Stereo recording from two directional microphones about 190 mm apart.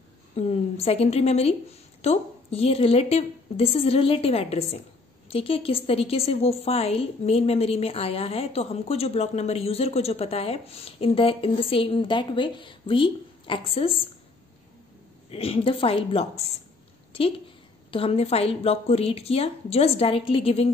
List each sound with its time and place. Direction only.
0.4 s a woman's voice: 35° left (ahead or behind)
15.3 s a woman's voice: 30° left (ahead or behind)
17.9 s a woman's voice: 30° left (ahead or behind)